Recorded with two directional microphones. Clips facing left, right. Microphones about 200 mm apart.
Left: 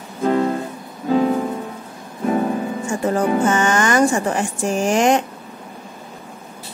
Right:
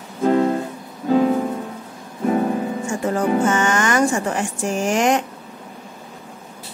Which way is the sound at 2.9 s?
35° left (ahead or behind).